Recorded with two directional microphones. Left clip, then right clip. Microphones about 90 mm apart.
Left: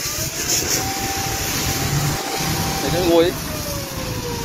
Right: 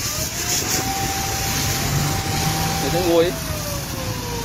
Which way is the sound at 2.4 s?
35° left (ahead or behind).